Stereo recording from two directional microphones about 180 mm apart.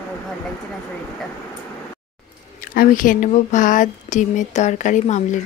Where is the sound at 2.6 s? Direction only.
55° left (ahead or behind).